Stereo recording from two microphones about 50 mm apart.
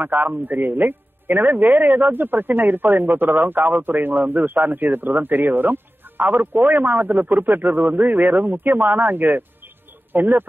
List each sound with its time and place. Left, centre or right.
0.0 s a man's voice: right